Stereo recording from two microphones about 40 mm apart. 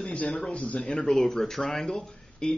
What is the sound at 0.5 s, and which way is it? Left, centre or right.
Speech, left.